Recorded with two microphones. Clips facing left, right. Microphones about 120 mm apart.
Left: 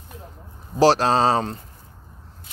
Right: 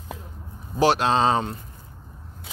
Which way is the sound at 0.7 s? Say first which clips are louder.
Left 3 dB; 35° left (ahead or behind).